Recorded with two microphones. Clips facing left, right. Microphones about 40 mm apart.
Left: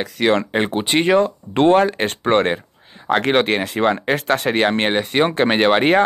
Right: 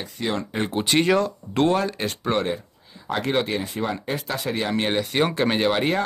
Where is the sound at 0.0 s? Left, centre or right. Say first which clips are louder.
Left 10 dB; left.